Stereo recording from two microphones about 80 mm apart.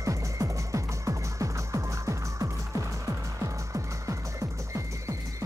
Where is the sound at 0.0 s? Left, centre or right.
Right.